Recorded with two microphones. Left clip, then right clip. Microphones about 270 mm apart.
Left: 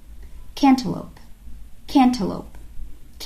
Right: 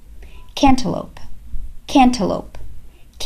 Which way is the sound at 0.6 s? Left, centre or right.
Right.